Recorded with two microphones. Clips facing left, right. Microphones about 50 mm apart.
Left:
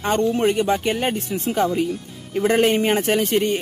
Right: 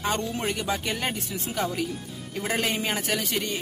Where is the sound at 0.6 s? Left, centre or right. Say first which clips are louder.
Left 8 dB; left.